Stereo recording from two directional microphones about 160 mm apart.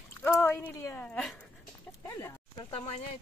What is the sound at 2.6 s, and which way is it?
Speech, 35° left (ahead or behind).